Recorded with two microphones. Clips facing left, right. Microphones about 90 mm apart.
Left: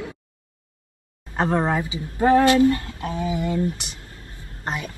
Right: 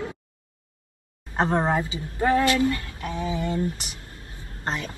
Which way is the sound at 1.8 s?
15° left (ahead or behind).